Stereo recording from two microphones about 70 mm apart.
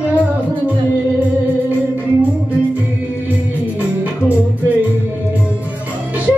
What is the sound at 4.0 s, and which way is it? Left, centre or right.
Music, right.